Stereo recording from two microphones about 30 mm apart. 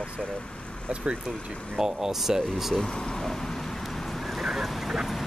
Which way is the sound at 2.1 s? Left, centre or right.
Centre.